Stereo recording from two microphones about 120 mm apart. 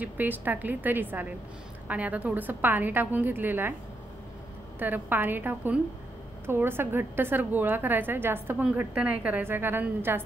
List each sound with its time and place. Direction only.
0.0 s a woman's voice: 15° right (ahead or behind)
4.7 s a woman's voice: 15° right (ahead or behind)